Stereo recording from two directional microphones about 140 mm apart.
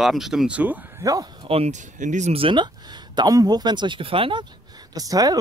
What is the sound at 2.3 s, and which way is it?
Speech, 35° right (ahead or behind).